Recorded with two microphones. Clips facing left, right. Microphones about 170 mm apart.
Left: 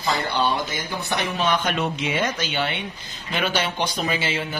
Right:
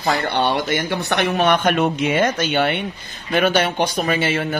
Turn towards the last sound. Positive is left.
turn(degrees=-55)  # may be behind; listen again after turning